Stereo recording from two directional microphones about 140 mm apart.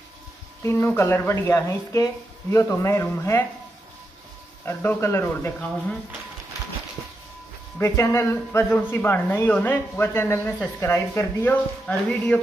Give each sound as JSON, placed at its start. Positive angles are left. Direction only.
{"t": 0.7, "sound": "speech", "side_deg": 20}
{"t": 4.6, "sound": "speech", "side_deg": 20}
{"t": 7.8, "sound": "speech", "side_deg": 20}